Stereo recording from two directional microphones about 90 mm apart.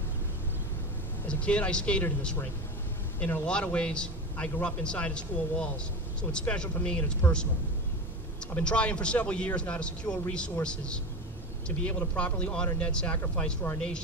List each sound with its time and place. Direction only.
1.4 s a man's voice: 15° left (ahead or behind)
3.2 s speech: 25° left (ahead or behind)
3.4 s a man's voice: 10° left (ahead or behind)
8.5 s a man's voice: 15° left (ahead or behind)